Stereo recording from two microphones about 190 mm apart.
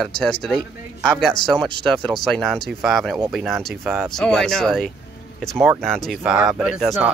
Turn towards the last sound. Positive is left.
turn(degrees=-5)  # may be behind; listen again after turning